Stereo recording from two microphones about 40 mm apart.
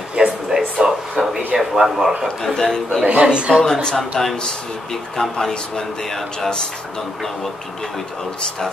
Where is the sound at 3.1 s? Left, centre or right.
Right.